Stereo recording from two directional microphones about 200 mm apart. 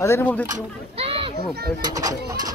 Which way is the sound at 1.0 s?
30° right (ahead or behind).